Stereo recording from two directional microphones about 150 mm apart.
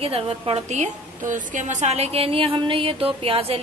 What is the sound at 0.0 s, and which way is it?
A woman's voice, 40° right (ahead or behind).